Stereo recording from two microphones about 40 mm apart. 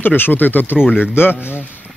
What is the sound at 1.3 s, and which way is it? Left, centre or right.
Speech, right.